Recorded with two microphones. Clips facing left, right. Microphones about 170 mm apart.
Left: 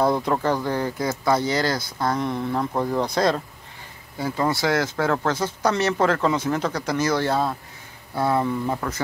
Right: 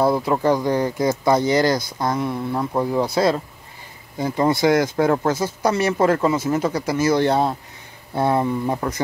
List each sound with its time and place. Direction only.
0.0 s speech: 5° right (ahead or behind)
4.2 s speech: 20° right (ahead or behind)